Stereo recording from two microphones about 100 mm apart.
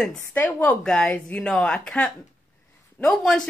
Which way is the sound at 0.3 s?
15° left (ahead or behind).